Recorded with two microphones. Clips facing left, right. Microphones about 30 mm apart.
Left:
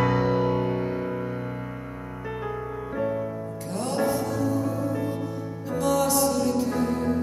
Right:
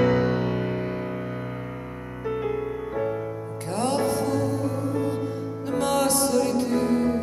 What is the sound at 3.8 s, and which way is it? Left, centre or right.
Music, right.